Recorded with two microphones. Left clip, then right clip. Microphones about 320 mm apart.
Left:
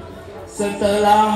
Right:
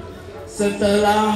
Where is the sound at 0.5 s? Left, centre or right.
Left.